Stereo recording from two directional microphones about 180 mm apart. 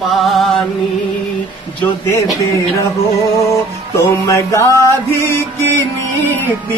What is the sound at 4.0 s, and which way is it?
Music, 15° left (ahead or behind).